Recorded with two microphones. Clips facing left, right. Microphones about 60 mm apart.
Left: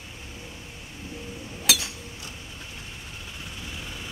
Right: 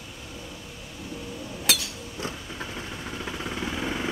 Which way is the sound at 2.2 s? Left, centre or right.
Right.